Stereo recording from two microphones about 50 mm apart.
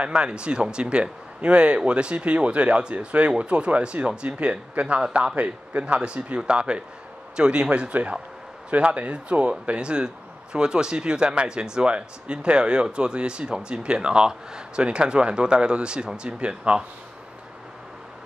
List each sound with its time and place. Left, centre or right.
0.0 s speech: right